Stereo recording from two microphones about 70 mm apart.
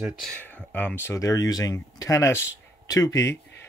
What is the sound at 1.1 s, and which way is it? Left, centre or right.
Speech, left.